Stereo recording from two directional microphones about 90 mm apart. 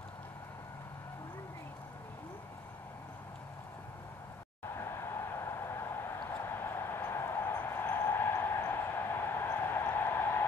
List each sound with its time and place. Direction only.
4.7 s vehicle: 30° left (ahead or behind)